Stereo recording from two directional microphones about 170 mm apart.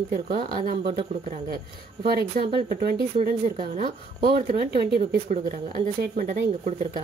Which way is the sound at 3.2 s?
55° right (ahead or behind).